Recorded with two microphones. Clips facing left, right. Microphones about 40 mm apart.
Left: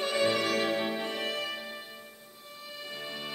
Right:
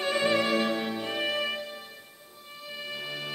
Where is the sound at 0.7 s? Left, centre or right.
Centre.